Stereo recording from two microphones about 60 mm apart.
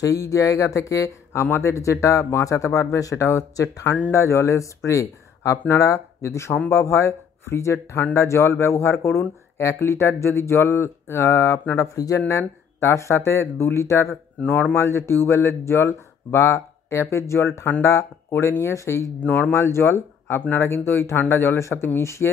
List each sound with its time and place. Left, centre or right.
0.0 s speech: left
4.1 s speech: left
12.3 s speech: left
19.1 s speech: left
19.5 s speech: left